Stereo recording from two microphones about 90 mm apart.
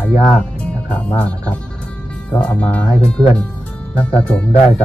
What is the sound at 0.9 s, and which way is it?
Speech, 15° left (ahead or behind).